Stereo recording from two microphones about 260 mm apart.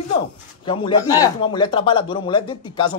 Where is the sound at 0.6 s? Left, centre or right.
Centre.